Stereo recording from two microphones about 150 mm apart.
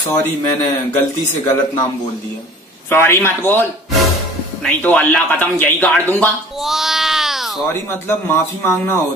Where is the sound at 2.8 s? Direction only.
15° left (ahead or behind).